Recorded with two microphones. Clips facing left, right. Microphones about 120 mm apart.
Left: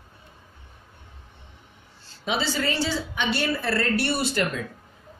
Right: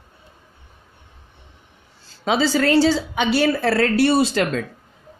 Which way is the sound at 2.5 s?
90° right.